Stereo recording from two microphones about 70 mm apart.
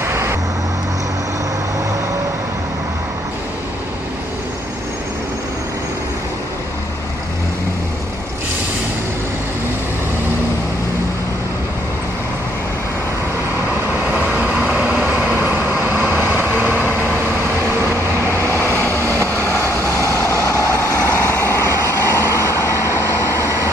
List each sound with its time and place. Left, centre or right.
0.0 s vehicle: right
14.0 s vehicle: right
18.6 s vehicle: left